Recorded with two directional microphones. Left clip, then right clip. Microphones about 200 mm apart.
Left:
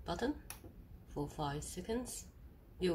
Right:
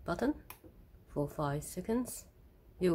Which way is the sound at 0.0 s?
60° right (ahead or behind).